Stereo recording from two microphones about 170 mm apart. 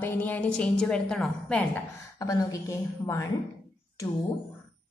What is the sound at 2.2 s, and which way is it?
A woman's voice, 20° left (ahead or behind).